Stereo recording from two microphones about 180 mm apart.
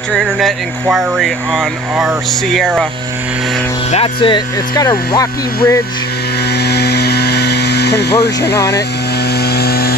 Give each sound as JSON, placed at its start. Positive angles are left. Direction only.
{"t": 0.1, "sound": "speech", "side_deg": 0}
{"t": 3.9, "sound": "speech", "side_deg": 30}
{"t": 6.5, "sound": "a sound", "side_deg": 65}
{"t": 9.4, "sound": "vehicle", "side_deg": 60}